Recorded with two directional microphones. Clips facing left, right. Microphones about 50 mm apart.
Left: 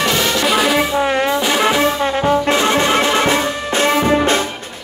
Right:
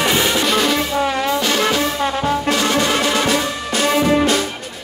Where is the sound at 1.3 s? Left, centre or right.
Left.